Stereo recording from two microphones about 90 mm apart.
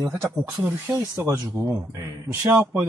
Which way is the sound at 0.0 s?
30° right (ahead or behind).